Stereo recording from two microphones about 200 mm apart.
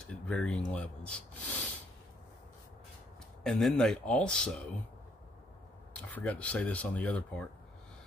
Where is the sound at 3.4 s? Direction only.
Centre (ahead or behind).